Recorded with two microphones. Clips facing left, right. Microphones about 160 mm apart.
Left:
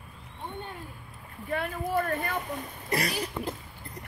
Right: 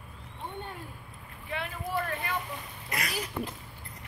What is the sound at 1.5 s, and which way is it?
Speech, 45° left (ahead or behind).